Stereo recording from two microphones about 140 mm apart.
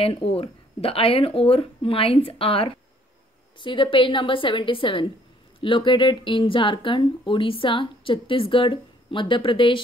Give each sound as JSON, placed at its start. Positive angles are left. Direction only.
{"t": 0.0, "sound": "speech", "side_deg": 45}